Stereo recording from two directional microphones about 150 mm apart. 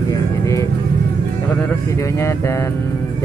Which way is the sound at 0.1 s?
20° left (ahead or behind).